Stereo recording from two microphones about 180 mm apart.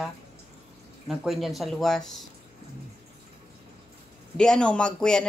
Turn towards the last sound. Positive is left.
turn(degrees=5)  # may be behind; listen again after turning